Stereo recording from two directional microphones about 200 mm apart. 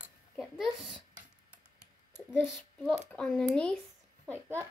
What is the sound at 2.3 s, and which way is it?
A child's voice, 10° left (ahead or behind).